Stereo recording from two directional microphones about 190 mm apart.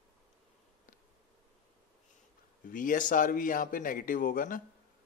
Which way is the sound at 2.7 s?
45° left (ahead or behind).